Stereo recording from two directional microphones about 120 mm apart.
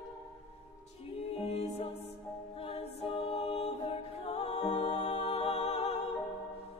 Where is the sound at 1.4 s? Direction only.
60° left (ahead or behind).